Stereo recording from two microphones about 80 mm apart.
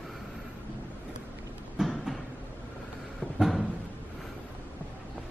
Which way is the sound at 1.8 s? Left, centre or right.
Centre.